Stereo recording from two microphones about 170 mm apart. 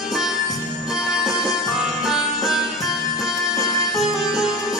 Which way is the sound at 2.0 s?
Centre (ahead or behind).